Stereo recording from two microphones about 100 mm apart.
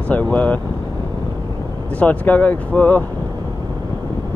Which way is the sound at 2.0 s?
15° left (ahead or behind).